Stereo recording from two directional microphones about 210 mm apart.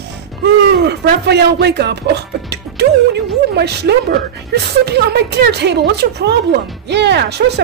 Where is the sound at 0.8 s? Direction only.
50° right (ahead or behind).